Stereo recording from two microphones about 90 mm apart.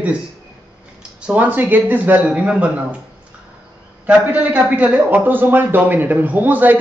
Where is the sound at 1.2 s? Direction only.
15° right (ahead or behind).